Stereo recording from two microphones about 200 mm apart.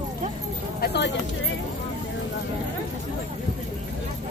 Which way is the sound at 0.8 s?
55° left (ahead or behind).